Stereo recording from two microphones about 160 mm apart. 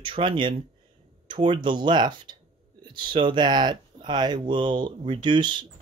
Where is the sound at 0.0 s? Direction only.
30° right (ahead or behind).